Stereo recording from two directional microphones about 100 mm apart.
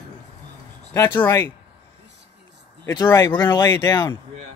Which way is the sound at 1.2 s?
25° left (ahead or behind).